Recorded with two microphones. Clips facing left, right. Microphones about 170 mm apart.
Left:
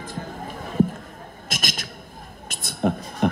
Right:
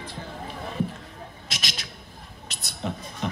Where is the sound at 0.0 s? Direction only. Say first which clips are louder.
Left 3 dB; 45° left (ahead or behind).